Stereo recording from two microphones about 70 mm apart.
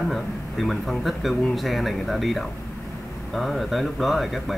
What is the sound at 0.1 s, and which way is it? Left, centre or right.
A man's voice, centre.